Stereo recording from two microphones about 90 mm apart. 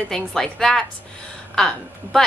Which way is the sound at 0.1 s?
5° left (ahead or behind).